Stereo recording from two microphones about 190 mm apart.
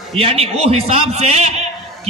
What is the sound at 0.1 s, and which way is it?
A man's voice, 30° right (ahead or behind).